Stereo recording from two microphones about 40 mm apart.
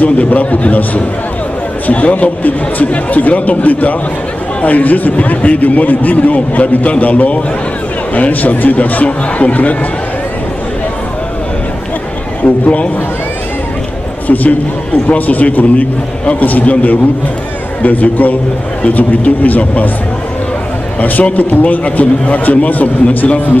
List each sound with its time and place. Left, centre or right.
0.0 s a man's voice: left
12.6 s a man's voice: left
14.2 s a man's voice: left
21.0 s a man's voice: left
23.0 s a man's voice: left